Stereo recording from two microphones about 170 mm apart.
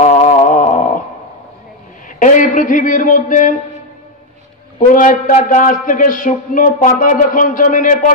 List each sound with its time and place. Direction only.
0.0 s a sound: 45° left (ahead or behind)
2.1 s a man's voice: 50° left (ahead or behind)
4.8 s a man's voice: 50° left (ahead or behind)